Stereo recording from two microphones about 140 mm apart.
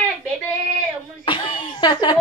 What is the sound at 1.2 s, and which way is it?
Speech, 35° left (ahead or behind).